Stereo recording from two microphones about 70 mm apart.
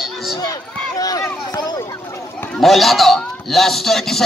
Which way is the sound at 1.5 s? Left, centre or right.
Left.